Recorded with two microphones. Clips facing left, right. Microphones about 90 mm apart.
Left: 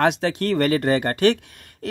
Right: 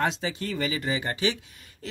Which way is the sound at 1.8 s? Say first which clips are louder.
Left 9 dB; 60° left (ahead or behind).